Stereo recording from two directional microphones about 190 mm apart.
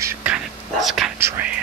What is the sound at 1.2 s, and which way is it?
Speech, 15° right (ahead or behind).